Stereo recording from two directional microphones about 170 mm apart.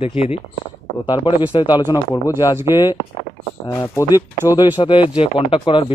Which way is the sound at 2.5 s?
15° right (ahead or behind).